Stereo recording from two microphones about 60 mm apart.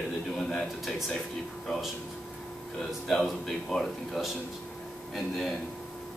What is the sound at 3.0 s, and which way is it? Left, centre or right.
Speech, centre.